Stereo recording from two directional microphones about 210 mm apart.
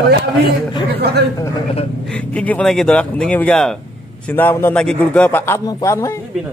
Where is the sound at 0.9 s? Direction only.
50° right (ahead or behind).